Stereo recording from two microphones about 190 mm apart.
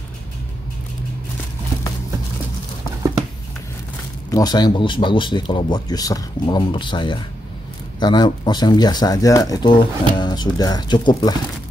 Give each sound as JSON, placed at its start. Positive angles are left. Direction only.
{"t": 4.3, "sound": "speech", "side_deg": 20}